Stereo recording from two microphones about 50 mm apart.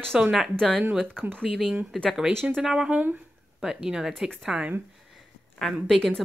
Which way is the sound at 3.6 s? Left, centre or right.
Centre.